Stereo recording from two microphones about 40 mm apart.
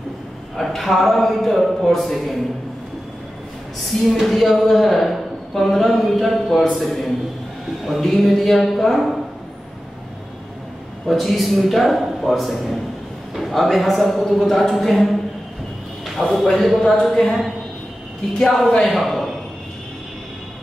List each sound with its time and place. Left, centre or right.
0.6 s speech: centre
4.0 s speech: centre
11.1 s speech: centre
16.2 s speech: centre
18.4 s speech: centre
18.7 s speech: centre
18.9 s a sound: centre